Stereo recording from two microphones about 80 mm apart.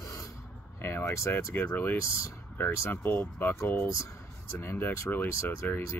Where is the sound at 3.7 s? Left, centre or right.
Left.